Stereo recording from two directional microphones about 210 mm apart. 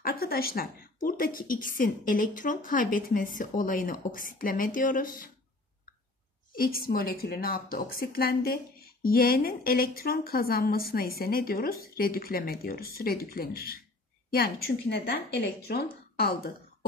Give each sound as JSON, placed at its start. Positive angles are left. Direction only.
{"t": 0.0, "sound": "a woman's voice", "side_deg": 45}
{"t": 6.5, "sound": "speech", "side_deg": 45}